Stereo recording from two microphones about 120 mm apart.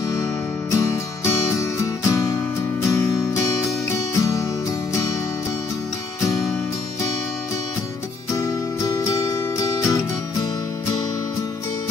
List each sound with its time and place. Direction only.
0.1 s music: 25° left (ahead or behind)
8.3 s music: 30° left (ahead or behind)